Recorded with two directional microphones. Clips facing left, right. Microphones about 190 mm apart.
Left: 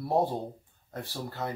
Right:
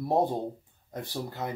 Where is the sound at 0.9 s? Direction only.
15° right (ahead or behind).